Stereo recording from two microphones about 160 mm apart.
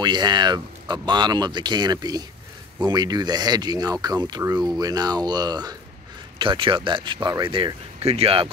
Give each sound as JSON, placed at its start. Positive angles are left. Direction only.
{"t": 0.0, "sound": "speech", "side_deg": -25}